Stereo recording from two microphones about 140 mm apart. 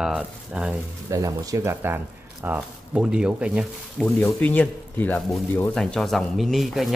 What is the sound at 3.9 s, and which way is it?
Speech, 5° left (ahead or behind).